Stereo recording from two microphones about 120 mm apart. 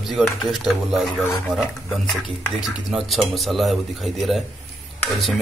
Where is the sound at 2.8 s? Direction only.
Centre (ahead or behind).